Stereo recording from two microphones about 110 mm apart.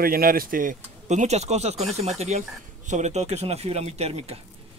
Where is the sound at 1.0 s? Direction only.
90° right; by 4.4 s 70° right (ahead or behind).